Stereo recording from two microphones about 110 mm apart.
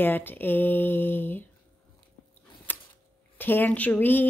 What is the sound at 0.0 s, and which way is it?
Speech, 20° left (ahead or behind).